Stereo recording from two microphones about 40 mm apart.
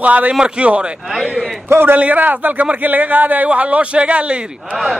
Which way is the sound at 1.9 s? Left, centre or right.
Right.